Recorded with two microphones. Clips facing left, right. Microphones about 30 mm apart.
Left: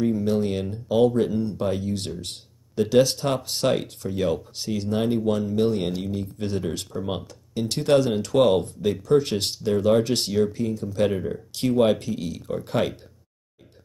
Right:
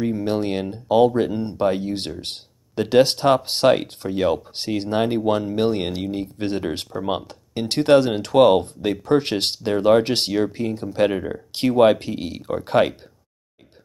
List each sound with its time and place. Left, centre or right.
0.1 s speech: right